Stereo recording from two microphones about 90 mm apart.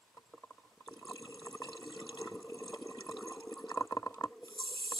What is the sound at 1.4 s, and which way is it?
Water, 40° left (ahead or behind).